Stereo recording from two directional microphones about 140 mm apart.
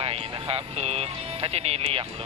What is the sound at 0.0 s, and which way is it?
Speech, 45° right (ahead or behind).